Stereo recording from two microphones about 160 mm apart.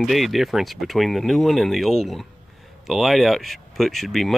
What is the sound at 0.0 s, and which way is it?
Speech, centre (ahead or behind).